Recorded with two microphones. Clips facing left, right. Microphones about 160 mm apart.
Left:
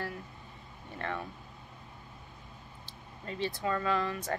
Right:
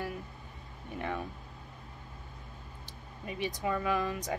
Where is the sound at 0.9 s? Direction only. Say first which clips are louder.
Right 1 dB; 15° right (ahead or behind).